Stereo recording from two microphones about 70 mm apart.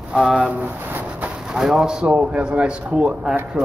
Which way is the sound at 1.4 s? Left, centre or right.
Centre.